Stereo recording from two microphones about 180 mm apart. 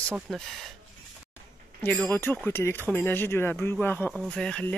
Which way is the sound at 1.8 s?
10° left (ahead or behind).